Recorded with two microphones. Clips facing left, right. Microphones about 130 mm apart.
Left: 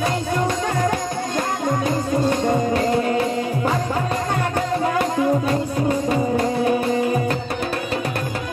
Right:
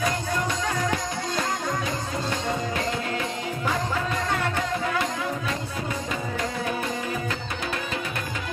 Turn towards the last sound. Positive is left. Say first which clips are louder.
# left 9 dB
turn(degrees=40)  # may be behind; listen again after turning